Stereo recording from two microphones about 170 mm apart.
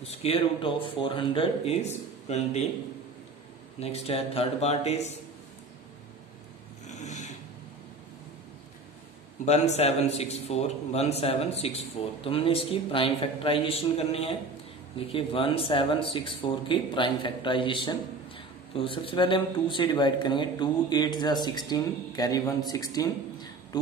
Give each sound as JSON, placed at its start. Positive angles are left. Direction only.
{"t": 0.0, "sound": "a man's voice", "side_deg": 35}
{"t": 3.8, "sound": "a man's voice", "side_deg": 35}
{"t": 6.9, "sound": "a sound", "side_deg": 45}
{"t": 9.4, "sound": "a man's voice", "side_deg": 40}